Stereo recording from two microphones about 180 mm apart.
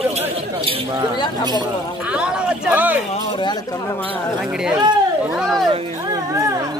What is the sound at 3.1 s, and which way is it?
Speech, 25° left (ahead or behind).